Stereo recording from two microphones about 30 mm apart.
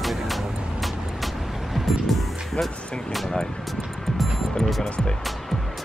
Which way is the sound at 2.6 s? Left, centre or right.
Centre.